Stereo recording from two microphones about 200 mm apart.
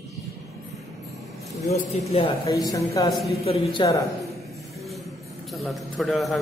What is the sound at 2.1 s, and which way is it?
Speech, 30° left (ahead or behind).